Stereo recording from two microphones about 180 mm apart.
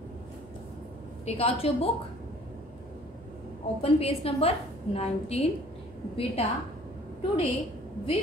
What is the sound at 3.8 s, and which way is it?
A woman's voice, 30° left (ahead or behind).